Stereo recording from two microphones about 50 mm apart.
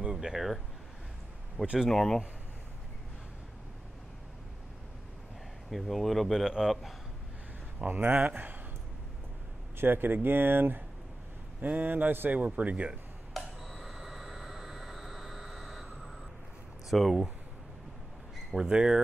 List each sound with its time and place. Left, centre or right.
0.1 s speech: centre
1.9 s speech: centre
5.7 s speech: centre
6.4 s speech: centre
7.8 s speech: right
9.8 s speech: right
13.4 s a sound: centre
16.9 s speech: centre
18.5 s speech: centre